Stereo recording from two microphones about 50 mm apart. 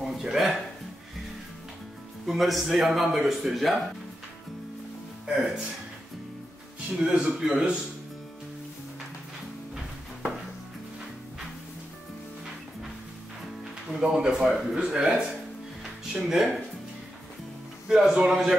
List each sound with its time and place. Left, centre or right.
0.2 s speech: centre
2.2 s speech: centre
5.2 s speech: centre
7.0 s speech: centre
13.8 s speech: centre
17.8 s speech: centre